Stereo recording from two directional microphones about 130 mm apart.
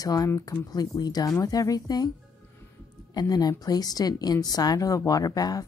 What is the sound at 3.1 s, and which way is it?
A woman's voice, 30° left (ahead or behind).